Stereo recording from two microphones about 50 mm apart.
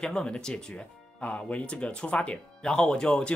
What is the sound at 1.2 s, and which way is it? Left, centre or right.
Speech, left.